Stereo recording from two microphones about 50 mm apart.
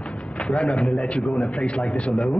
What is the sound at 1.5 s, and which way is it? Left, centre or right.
Speech, centre.